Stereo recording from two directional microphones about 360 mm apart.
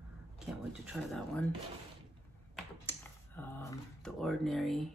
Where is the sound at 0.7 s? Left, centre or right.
Centre.